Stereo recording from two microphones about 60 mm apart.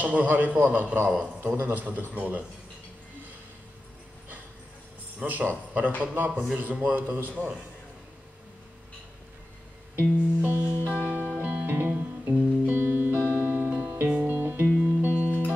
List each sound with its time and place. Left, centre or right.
0.0 s a man's voice: right
5.2 s a man's voice: right
9.9 s a man's voice: right
11.1 s music: right